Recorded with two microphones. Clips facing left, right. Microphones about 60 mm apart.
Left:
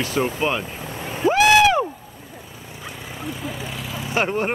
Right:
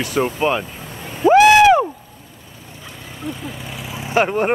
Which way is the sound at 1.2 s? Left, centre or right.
Centre.